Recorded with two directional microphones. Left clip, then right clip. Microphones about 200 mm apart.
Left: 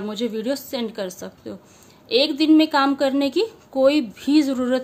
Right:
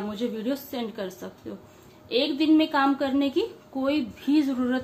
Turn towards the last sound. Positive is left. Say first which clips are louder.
# left 5 dB
turn(degrees=55)  # may be behind; listen again after turning